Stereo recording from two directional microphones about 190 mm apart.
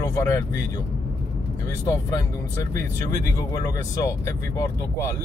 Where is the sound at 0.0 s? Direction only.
15° left (ahead or behind).